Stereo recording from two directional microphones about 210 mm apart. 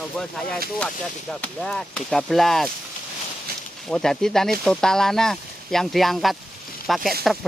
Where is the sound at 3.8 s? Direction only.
5° left (ahead or behind).